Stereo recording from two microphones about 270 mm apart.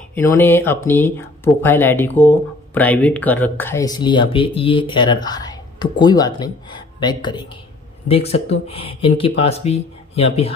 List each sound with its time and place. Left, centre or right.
0.1 s speech: centre